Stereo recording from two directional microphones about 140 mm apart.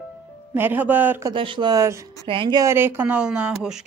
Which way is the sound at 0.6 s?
15° right (ahead or behind).